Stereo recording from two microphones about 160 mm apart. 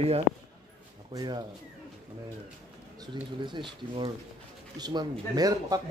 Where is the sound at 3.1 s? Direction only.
30° right (ahead or behind).